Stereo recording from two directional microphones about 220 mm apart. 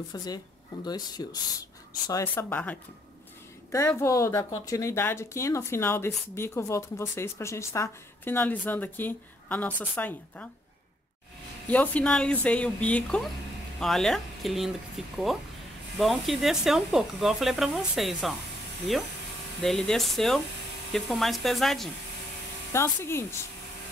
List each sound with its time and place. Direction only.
0.1 s speech: 15° left (ahead or behind)
11.6 s speech: 5° left (ahead or behind)
19.6 s speech: centre (ahead or behind)
22.7 s speech: 10° left (ahead or behind)